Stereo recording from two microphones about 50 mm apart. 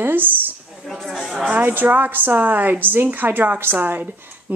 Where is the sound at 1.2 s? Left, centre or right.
Centre.